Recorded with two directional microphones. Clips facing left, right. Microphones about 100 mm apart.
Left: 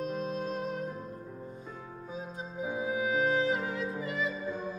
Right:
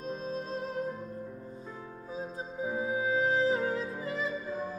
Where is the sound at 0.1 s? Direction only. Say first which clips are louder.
Left 2 dB; 35° right (ahead or behind).